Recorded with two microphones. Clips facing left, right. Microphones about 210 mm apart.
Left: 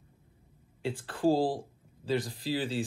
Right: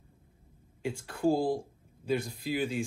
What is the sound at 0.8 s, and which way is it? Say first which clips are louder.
Speech: left 1 dB; 10° right (ahead or behind).